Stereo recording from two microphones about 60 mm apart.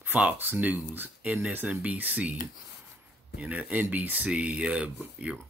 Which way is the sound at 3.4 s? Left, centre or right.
Right.